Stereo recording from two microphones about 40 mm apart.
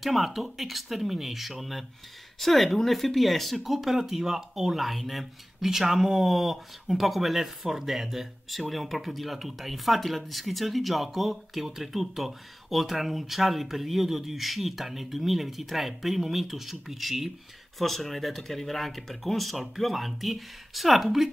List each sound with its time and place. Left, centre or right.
0.0 s speech: centre